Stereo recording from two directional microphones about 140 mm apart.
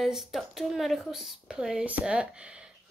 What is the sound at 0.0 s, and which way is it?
Speech, centre (ahead or behind).